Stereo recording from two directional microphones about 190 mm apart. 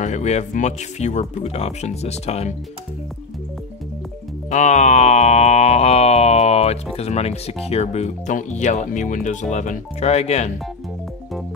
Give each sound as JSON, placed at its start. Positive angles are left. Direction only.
{"t": 0.0, "sound": "speech", "side_deg": 35}
{"t": 4.5, "sound": "speech", "side_deg": 40}